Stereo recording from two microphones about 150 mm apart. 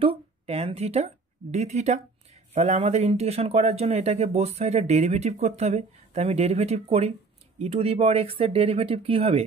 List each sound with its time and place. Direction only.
0.0 s speech: 40° right (ahead or behind)